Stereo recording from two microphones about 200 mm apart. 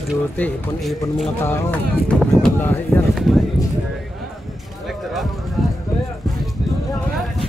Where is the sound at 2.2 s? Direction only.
5° left (ahead or behind).